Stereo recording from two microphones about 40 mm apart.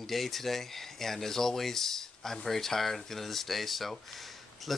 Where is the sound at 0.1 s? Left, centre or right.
Centre.